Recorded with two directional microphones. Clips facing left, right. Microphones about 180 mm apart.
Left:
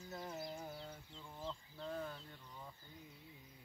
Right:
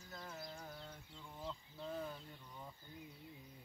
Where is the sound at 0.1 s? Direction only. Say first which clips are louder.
Left 4 dB; 25° left (ahead or behind).